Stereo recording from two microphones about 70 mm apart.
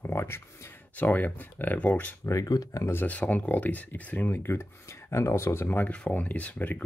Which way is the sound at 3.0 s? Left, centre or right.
Left.